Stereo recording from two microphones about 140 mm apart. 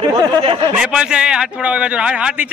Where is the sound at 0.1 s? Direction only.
30° right (ahead or behind).